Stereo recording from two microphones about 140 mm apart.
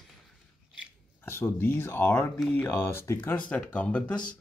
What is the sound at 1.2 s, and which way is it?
Speech, 15° left (ahead or behind).